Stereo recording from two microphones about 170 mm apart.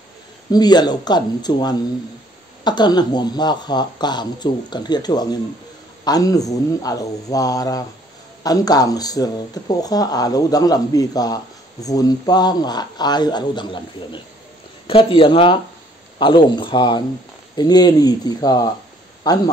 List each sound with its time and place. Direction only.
0.5 s speech: 25° left (ahead or behind)